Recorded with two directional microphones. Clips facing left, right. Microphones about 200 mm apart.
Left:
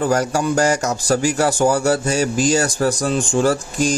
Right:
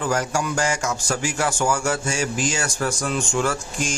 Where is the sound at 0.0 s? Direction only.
40° left (ahead or behind).